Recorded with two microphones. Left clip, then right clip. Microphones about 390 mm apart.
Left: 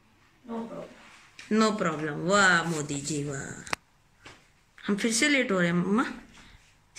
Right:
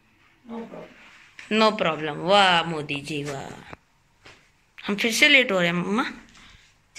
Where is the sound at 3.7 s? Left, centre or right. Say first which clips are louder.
Left 12 dB; left.